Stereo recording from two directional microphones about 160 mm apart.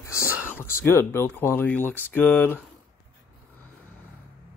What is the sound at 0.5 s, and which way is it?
Speech, 15° left (ahead or behind).